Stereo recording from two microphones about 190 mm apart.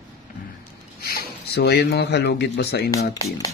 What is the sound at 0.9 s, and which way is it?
Speech, 50° left (ahead or behind).